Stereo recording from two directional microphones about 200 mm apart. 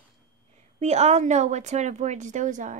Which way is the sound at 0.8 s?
35° right (ahead or behind).